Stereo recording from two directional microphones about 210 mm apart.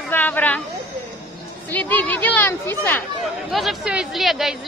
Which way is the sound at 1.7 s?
10° left (ahead or behind).